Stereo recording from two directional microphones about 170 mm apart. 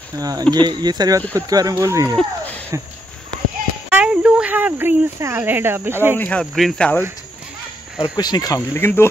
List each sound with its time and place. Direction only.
0.2 s speech: 20° right (ahead or behind)
2.1 s a sound: 10° left (ahead or behind)
3.9 s speech: 5° right (ahead or behind)
6.1 s speech: 10° left (ahead or behind)
8.0 s speech: 25° left (ahead or behind)